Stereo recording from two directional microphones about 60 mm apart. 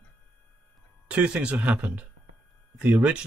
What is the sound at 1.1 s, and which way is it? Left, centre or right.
Speech, centre.